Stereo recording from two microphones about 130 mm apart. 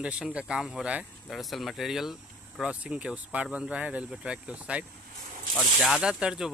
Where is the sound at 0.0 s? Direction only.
10° right (ahead or behind).